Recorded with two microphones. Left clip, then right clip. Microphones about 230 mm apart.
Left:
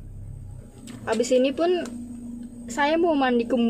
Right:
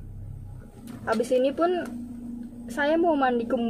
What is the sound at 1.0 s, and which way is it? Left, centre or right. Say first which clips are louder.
A woman's voice: left 2 dB; left.